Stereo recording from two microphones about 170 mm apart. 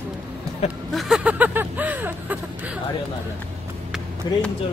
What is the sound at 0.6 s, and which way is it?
Speech, 40° left (ahead or behind).